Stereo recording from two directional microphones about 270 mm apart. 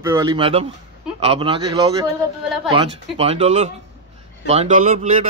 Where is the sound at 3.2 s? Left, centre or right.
Right.